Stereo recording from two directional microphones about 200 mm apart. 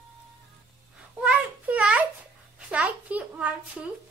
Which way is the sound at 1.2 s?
5° right (ahead or behind).